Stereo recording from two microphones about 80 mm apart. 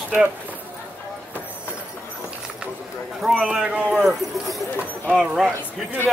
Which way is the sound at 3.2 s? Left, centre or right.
Centre.